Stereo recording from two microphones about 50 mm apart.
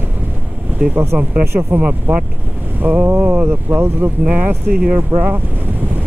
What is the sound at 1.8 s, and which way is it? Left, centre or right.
Speech, right.